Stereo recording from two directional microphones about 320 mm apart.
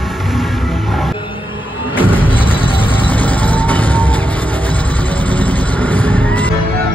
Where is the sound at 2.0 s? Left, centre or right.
Centre.